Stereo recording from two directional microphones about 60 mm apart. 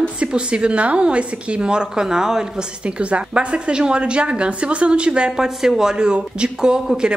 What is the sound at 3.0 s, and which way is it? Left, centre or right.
A woman's voice, centre.